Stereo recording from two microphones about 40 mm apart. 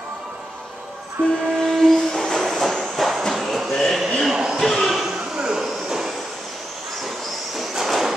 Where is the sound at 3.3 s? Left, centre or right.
Centre.